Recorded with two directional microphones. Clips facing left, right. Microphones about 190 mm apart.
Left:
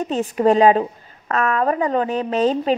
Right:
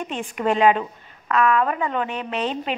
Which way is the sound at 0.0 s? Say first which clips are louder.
Left 7 dB; 35° left (ahead or behind).